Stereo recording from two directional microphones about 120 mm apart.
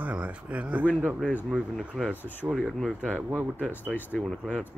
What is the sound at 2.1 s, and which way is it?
Speech, 15° left (ahead or behind).